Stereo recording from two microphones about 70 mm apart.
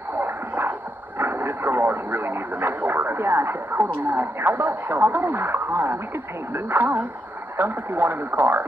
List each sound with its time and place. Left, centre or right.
0.2 s radio: right
4.0 s speech: right